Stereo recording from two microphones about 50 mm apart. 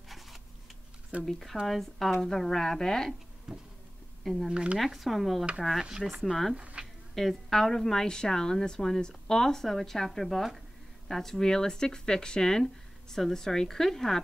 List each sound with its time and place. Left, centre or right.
1.2 s a woman's voice: centre
3.5 s speech: centre
4.2 s speech: centre
4.5 s speech: centre
4.7 s speech: centre
6.5 s speech: right
7.2 s a woman's voice: centre